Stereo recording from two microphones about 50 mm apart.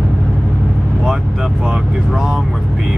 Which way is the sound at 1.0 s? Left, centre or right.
Centre.